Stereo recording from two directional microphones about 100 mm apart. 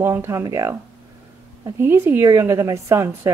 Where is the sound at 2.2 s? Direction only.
35° right (ahead or behind).